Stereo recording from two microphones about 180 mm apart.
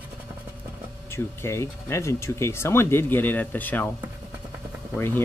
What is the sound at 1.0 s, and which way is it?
Speech, 15° left (ahead or behind).